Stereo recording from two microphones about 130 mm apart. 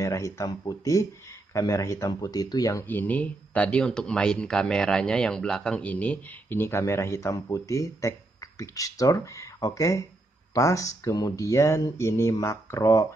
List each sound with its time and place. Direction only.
0.0 s speech: 25° left (ahead or behind)
2.9 s speech: 15° left (ahead or behind)